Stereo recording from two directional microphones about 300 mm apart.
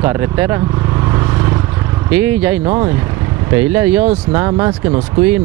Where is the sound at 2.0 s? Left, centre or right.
Centre.